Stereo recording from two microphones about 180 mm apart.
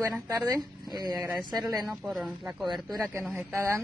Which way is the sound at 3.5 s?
15° right (ahead or behind).